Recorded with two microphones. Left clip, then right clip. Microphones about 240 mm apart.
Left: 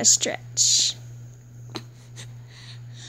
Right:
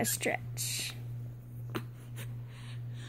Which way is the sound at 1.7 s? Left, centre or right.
Centre.